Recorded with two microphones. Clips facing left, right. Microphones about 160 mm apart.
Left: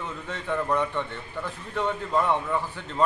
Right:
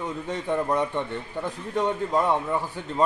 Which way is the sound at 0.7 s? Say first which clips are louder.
Right 2 dB; 20° right (ahead or behind).